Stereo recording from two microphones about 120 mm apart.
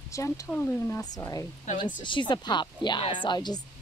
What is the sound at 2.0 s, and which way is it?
Speech, 40° left (ahead or behind).